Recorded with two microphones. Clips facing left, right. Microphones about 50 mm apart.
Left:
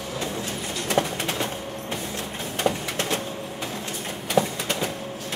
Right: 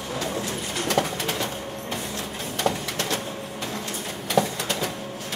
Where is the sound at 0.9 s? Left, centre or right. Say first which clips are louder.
Left 1 dB; left.